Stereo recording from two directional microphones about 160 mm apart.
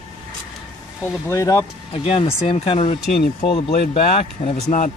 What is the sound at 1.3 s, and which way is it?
Speech, 20° left (ahead or behind).